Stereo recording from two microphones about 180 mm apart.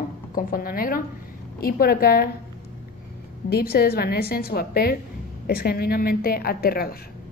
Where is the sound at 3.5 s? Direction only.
60° left (ahead or behind).